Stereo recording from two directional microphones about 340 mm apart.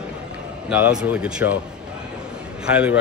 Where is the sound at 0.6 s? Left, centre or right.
Centre.